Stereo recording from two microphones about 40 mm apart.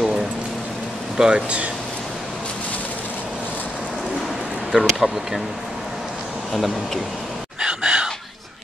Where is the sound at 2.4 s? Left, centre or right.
Left.